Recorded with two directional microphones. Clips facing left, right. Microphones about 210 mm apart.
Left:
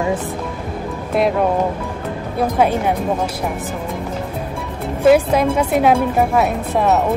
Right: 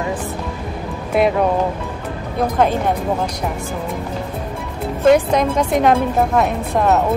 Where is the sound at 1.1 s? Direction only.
Centre (ahead or behind).